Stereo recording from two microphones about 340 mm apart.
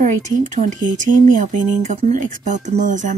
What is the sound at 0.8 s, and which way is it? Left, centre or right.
Speech, right.